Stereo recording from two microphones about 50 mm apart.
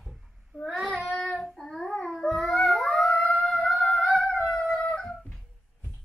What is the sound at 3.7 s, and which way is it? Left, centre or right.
Humming, left.